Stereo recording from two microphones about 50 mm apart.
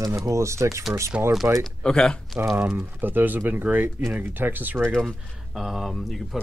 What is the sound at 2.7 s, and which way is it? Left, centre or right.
Speech, right.